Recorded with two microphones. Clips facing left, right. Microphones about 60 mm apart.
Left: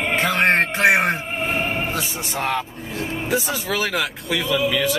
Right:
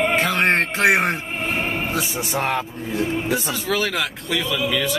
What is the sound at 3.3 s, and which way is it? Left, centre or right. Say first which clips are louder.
Speech: even; centre.